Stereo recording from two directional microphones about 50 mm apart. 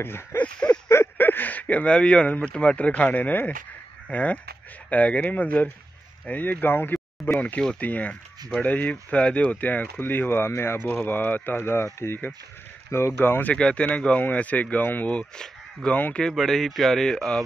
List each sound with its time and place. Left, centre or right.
0.0 s speech: left
0.6 s a sound: left
1.1 s a sound: left
1.9 s speech: left
7.3 s speech: left
11.1 s speech: left
13.2 s speech: left
13.6 s speech: left
15.0 s speech: left
16.3 s speech: centre